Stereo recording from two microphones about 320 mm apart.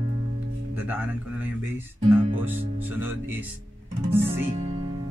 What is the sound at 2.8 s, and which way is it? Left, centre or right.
Speech, centre.